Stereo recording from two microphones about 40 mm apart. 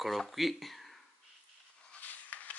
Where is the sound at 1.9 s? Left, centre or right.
Left.